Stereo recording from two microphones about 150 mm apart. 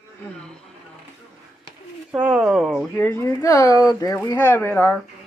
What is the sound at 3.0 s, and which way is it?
Speech, 15° left (ahead or behind).